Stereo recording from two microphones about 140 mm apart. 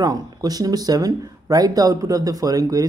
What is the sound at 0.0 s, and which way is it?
Speech, 25° right (ahead or behind).